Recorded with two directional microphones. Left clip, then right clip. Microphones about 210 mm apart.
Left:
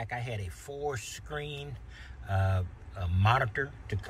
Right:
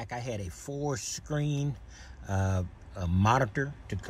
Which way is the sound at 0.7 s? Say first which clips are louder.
Right 1 dB; 30° right (ahead or behind).